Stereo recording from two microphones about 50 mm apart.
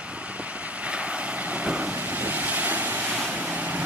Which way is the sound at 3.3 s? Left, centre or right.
Right.